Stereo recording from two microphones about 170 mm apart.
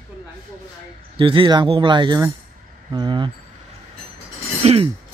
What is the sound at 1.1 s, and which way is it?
A man's voice, 30° right (ahead or behind).